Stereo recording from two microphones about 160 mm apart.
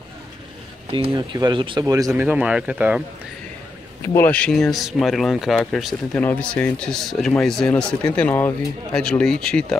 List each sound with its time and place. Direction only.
1.1 s speech: 30° right (ahead or behind)
2.1 s speech: 10° right (ahead or behind)
4.0 s speech: 15° left (ahead or behind)